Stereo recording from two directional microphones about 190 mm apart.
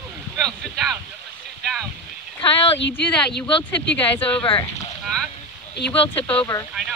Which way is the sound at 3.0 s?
5° left (ahead or behind).